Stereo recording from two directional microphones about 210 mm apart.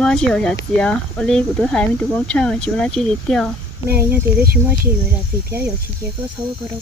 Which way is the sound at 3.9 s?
10° right (ahead or behind).